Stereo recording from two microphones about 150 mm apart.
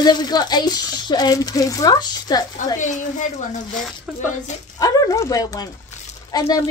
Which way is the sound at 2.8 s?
55° left (ahead or behind).